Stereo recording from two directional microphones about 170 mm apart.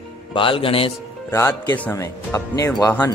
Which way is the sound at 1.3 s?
20° left (ahead or behind).